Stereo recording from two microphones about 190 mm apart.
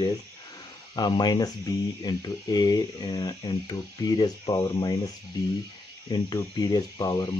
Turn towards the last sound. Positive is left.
turn(degrees=20)  # may be behind; listen again after turning